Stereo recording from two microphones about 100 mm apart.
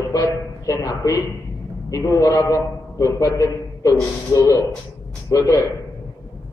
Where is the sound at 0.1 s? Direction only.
35° left (ahead or behind).